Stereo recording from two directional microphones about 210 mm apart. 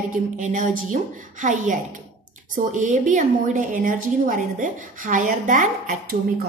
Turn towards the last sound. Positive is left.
turn(degrees=-35)  # may be behind; listen again after turning